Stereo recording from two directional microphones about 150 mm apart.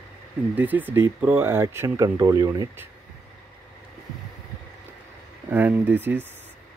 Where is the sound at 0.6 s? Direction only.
10° right (ahead or behind).